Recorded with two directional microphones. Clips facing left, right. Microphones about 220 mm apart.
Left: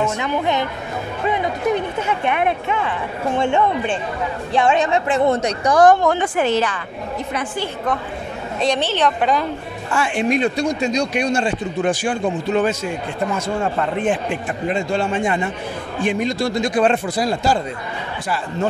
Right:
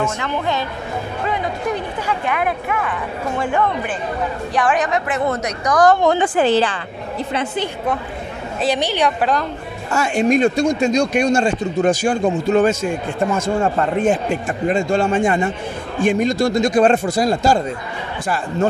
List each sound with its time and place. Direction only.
0.2 s speech: 20° left (ahead or behind)
6.1 s a woman's voice: 30° right (ahead or behind)
7.3 s a woman's voice: 20° right (ahead or behind)
8.5 s a woman's voice: 10° right (ahead or behind)
9.8 s speech: 40° right (ahead or behind)